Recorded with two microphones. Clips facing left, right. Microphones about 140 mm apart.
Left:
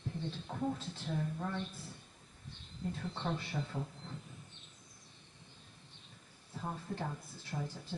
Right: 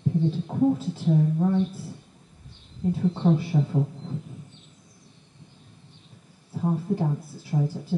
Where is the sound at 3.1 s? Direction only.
10° right (ahead or behind).